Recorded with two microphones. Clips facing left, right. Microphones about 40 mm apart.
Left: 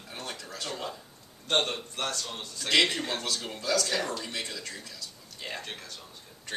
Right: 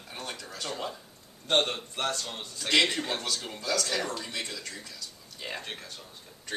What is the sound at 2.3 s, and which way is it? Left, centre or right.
Speech, centre.